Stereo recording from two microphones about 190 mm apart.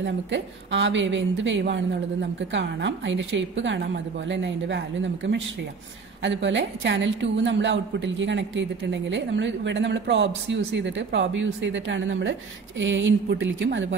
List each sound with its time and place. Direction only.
0.0 s a woman's voice: 70° right (ahead or behind)